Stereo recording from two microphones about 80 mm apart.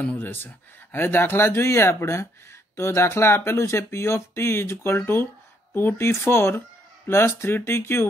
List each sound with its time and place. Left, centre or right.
0.0 s speech: left